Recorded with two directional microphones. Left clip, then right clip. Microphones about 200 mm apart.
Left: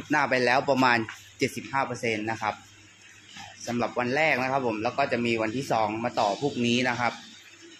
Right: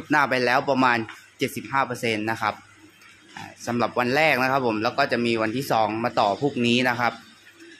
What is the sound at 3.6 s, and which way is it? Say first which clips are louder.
Speech: right 5 dB; 20° right (ahead or behind).